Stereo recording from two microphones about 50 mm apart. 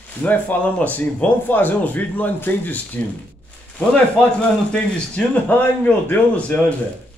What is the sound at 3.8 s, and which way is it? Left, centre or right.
Speech, left.